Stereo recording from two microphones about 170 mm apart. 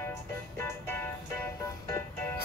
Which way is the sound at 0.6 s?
15° left (ahead or behind).